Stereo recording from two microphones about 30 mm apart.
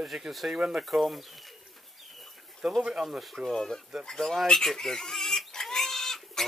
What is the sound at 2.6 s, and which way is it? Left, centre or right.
Speech, centre.